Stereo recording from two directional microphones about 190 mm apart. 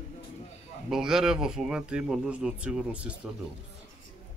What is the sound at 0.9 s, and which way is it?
Speech, 5° right (ahead or behind).